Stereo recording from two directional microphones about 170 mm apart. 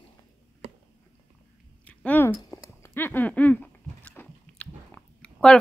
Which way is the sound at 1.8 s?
10° left (ahead or behind).